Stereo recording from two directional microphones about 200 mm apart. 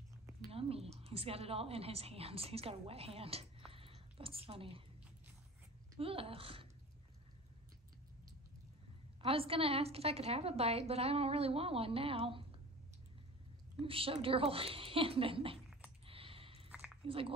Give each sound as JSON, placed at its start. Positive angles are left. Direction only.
{"t": 0.5, "sound": "a woman's voice", "side_deg": -30}
{"t": 5.9, "sound": "a woman's voice", "side_deg": -30}
{"t": 9.2, "sound": "a woman's voice", "side_deg": -30}
{"t": 13.7, "sound": "a woman's voice", "side_deg": -25}
{"t": 16.1, "sound": "a sound", "side_deg": -25}
{"t": 16.7, "sound": "a sound", "side_deg": -5}